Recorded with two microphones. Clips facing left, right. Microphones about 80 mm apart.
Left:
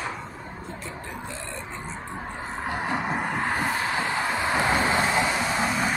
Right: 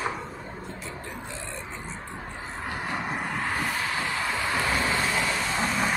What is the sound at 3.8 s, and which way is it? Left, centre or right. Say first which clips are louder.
Vehicle: left 3 dB; left.